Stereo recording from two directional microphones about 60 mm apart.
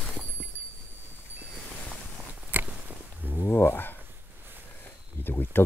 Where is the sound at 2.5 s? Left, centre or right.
Right.